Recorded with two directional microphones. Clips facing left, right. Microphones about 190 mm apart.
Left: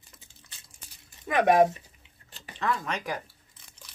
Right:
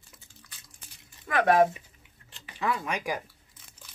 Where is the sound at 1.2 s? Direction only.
20° left (ahead or behind).